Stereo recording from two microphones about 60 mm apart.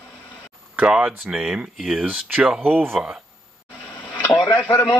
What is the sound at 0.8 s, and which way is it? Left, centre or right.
Speech, centre.